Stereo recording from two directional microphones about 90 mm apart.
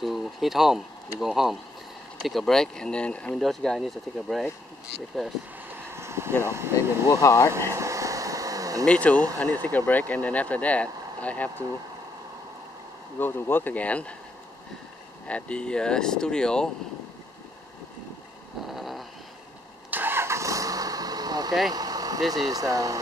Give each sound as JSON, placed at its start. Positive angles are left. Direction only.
{"t": 0.0, "sound": "speech", "side_deg": 0}
{"t": 5.9, "sound": "vehicle", "side_deg": -30}
{"t": 6.4, "sound": "speech", "side_deg": -30}
{"t": 7.2, "sound": "speech", "side_deg": 40}
{"t": 7.5, "sound": "air conditioning", "side_deg": -35}
{"t": 8.8, "sound": "speech", "side_deg": 15}
{"t": 13.2, "sound": "speech", "side_deg": 20}
{"t": 15.2, "sound": "speech", "side_deg": 15}
{"t": 18.7, "sound": "a sound", "side_deg": 0}
{"t": 19.9, "sound": "vehicle", "side_deg": -25}
{"t": 22.5, "sound": "speech", "side_deg": -40}